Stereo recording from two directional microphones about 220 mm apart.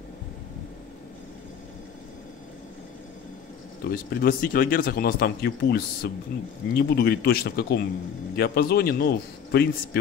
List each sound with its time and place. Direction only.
3.8 s speech: 40° left (ahead or behind)